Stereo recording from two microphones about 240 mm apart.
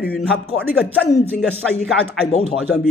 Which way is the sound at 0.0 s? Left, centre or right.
Centre.